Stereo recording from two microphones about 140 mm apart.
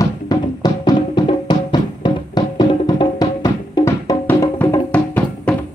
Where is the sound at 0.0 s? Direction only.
30° left (ahead or behind).